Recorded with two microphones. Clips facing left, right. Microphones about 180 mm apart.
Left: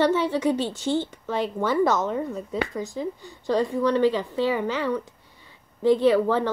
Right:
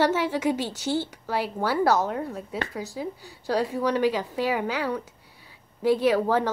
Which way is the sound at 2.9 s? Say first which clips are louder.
Left 3 dB; 10° right (ahead or behind).